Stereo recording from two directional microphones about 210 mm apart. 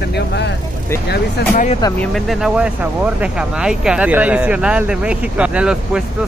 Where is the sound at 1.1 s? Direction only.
45° left (ahead or behind).